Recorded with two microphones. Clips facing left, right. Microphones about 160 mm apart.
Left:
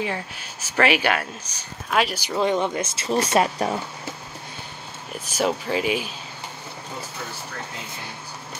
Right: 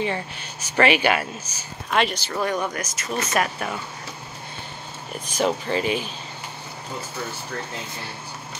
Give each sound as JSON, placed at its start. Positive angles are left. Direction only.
{"t": 0.0, "sound": "speech", "side_deg": 5}
{"t": 2.2, "sound": "speech", "side_deg": 20}
{"t": 5.2, "sound": "speech", "side_deg": 5}